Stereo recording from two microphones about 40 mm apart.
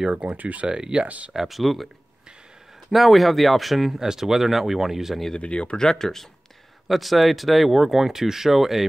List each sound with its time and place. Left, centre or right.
0.1 s speech: right
0.7 s speech: right
1.0 s speech: right
1.3 s speech: centre
2.9 s speech: centre
5.3 s speech: left
5.9 s speech: centre
6.9 s speech: centre